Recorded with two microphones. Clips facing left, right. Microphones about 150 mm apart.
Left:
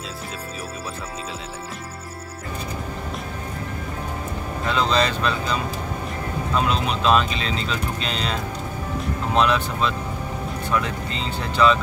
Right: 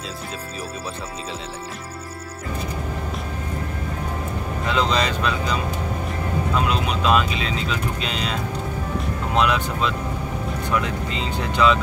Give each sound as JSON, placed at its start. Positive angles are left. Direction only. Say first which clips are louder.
{"t": 4.6, "sound": "speech", "louder": "left 1 dB", "side_deg": -15}
{"t": 9.3, "sound": "speech", "louder": "left 1 dB", "side_deg": -15}